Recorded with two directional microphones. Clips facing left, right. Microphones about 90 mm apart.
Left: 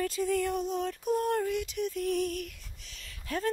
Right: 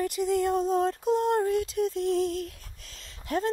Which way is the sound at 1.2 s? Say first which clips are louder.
Right 4 dB; 25° right (ahead or behind).